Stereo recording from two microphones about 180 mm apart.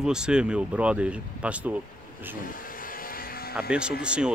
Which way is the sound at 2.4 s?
50° left (ahead or behind).